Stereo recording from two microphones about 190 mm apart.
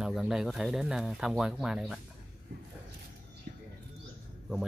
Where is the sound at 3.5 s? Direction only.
50° right (ahead or behind).